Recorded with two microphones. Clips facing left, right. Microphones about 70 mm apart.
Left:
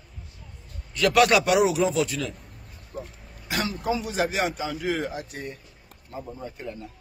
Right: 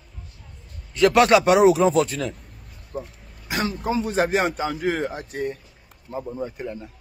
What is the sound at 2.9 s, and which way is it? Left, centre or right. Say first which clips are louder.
A man's voice: right 4 dB; right.